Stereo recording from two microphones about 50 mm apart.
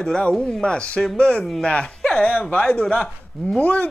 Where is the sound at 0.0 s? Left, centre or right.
Centre.